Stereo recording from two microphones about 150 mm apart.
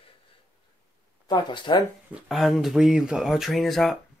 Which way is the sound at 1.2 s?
30° left (ahead or behind).